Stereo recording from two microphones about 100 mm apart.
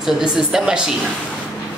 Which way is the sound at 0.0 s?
5° right (ahead or behind).